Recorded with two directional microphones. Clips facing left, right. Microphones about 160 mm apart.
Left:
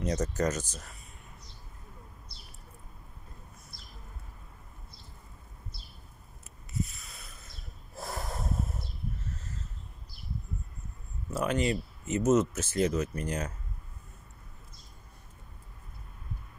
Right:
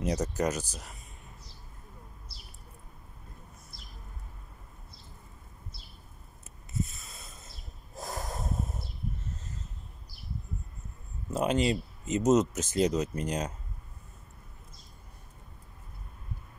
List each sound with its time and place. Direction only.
0.0 s speech: 10° right (ahead or behind)
7.0 s snort: 25° right (ahead or behind)
11.3 s speech: 20° right (ahead or behind)